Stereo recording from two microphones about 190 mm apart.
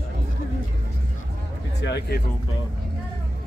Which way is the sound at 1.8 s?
60° left (ahead or behind).